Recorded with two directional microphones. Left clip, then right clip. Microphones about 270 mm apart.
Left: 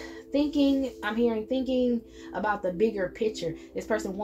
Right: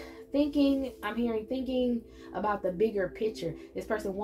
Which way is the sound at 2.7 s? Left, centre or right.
Left.